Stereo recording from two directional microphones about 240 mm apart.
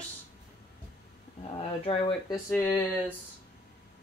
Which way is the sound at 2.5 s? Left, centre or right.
Centre.